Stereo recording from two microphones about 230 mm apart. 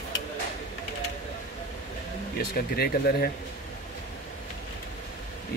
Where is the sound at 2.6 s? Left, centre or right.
Left.